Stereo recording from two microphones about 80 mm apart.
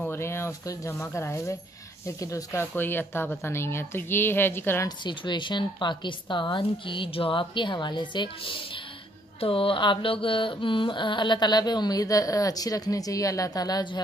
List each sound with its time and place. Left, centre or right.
0.1 s speech: left
2.6 s a woman's voice: left
4.8 s speech: left
9.7 s a sound: left